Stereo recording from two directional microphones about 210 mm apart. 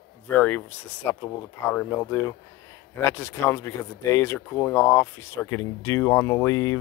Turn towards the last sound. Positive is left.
turn(degrees=15)  # may be behind; listen again after turning